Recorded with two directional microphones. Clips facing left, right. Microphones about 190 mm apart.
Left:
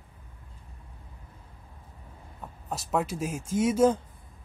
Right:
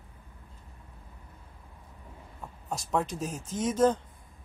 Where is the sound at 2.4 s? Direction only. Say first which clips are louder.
Even; centre (ahead or behind).